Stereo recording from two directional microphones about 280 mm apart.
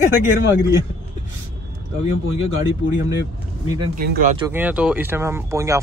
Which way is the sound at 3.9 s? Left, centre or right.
Right.